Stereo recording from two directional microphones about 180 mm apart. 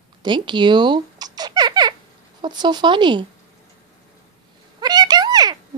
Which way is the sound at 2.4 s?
25° right (ahead or behind).